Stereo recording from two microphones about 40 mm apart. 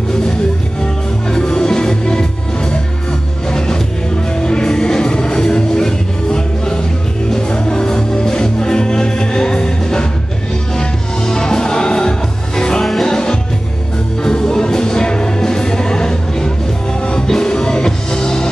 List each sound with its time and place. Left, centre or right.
1.2 s music: centre